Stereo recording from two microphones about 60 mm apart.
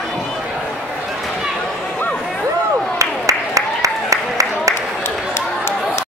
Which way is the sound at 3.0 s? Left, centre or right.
Right.